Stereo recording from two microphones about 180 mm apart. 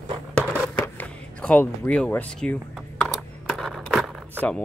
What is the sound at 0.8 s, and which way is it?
Speech, 10° left (ahead or behind).